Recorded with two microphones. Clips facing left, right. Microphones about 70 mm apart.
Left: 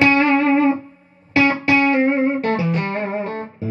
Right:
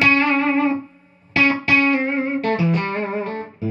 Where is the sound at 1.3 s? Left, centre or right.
Left.